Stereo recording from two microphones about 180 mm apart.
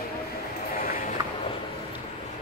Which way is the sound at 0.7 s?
50° left (ahead or behind).